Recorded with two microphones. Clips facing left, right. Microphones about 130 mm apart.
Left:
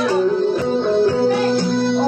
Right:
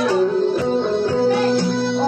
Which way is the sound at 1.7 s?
50° left (ahead or behind).